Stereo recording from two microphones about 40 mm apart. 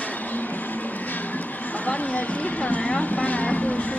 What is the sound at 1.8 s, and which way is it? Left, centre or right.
Speech, left.